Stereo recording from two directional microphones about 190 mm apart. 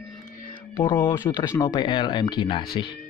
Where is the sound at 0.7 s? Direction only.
15° left (ahead or behind).